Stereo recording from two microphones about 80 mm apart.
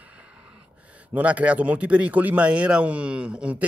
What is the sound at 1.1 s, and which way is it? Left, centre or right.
A man's voice, centre.